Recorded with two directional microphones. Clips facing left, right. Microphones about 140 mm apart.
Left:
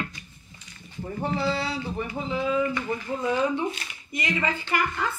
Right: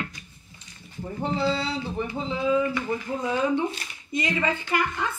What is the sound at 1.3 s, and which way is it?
Speech, 20° right (ahead or behind).